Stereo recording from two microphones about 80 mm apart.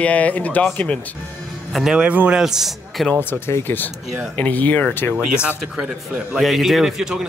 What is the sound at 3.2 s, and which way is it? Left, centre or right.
Speech, left.